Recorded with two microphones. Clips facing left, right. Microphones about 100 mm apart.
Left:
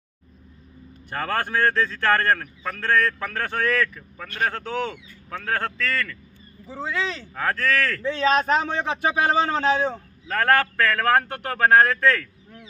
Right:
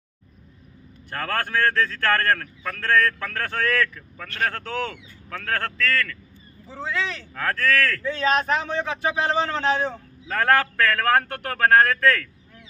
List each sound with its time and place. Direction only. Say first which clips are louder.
1.1 s a man's voice: left 1 dB; 10° left (ahead or behind)
8.0 s a man's voice: left 2 dB; 25° left (ahead or behind)
10.2 s a man's voice: even; centre (ahead or behind)